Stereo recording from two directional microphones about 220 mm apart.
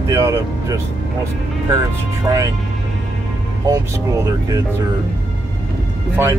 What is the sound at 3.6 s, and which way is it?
Speech, 15° right (ahead or behind).